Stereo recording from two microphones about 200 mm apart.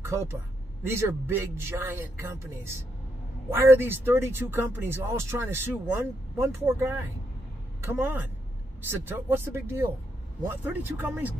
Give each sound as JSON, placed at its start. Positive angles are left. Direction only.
{"t": 0.0, "sound": "speech", "side_deg": -15}